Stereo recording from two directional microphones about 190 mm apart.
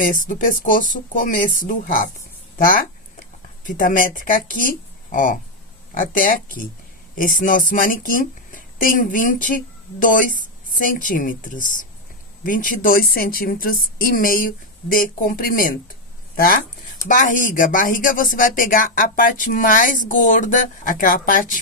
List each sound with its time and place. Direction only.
0.0 s a woman's voice: 45° left (ahead or behind)
3.6 s a woman's voice: 45° left (ahead or behind)
17.1 s a woman's voice: 45° left (ahead or behind)